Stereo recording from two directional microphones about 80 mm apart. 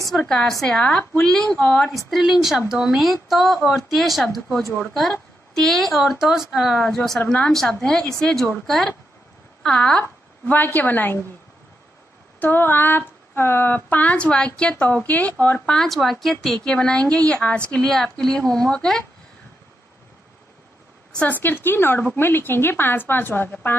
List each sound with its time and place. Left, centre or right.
0.1 s speech: centre
9.6 s a sound: centre
10.5 s speech: left
12.4 s speech: left
15.7 s speech: centre
21.1 s speech: centre